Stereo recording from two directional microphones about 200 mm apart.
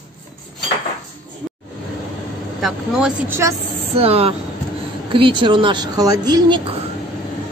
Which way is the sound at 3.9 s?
30° right (ahead or behind).